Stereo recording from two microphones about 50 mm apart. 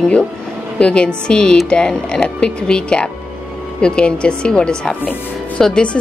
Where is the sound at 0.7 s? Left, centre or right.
Left.